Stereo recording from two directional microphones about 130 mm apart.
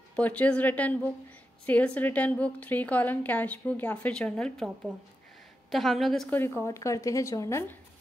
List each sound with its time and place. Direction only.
0.1 s a woman's voice: 10° left (ahead or behind)
5.7 s a woman's voice: centre (ahead or behind)
6.3 s a woman's voice: 15° left (ahead or behind)